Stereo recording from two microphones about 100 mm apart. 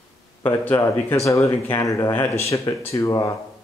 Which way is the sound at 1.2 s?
30° left (ahead or behind).